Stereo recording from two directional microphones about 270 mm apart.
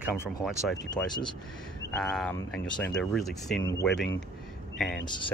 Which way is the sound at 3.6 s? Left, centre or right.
Centre.